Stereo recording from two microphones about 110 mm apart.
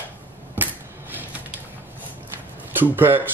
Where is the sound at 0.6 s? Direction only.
20° right (ahead or behind).